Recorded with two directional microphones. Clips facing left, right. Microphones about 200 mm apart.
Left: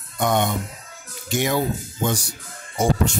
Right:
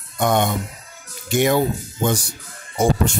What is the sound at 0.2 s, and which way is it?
Speech, 55° right (ahead or behind).